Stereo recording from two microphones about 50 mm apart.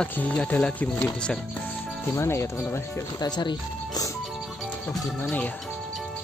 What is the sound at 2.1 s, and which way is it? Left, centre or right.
Speech, left.